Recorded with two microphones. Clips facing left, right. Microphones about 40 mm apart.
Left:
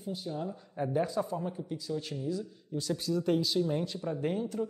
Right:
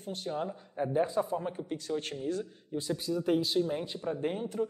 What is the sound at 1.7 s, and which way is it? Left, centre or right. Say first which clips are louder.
Speech: right 1 dB; right.